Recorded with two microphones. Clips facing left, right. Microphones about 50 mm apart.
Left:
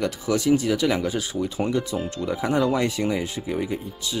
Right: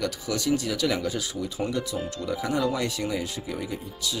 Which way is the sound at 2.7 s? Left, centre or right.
Left.